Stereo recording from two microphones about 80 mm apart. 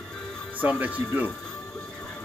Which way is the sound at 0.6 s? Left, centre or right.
Right.